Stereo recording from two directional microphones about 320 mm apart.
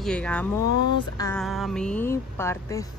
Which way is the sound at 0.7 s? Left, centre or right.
Right.